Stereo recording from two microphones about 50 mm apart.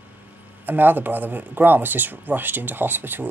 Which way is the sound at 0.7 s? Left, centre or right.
Right.